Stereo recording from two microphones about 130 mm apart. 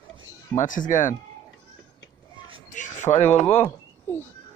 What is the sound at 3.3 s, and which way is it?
Speech, 15° left (ahead or behind).